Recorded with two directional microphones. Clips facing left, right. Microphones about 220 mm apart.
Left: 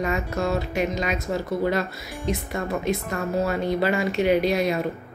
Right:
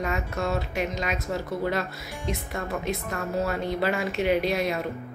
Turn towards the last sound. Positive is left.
turn(degrees=0)  # may be behind; listen again after turning